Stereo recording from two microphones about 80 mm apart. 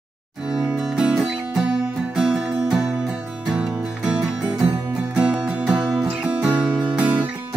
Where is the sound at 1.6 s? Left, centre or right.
Centre.